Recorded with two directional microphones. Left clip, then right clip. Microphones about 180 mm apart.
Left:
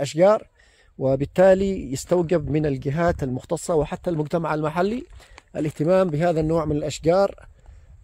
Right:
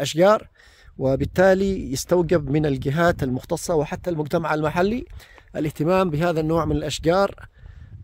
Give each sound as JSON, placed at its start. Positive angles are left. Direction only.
{"t": 0.0, "sound": "speech", "side_deg": -30}